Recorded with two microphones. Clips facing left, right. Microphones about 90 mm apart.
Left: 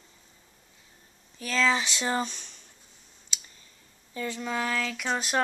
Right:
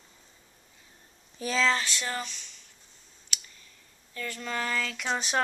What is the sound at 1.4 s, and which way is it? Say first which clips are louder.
Speech: right 2 dB; 30° right (ahead or behind).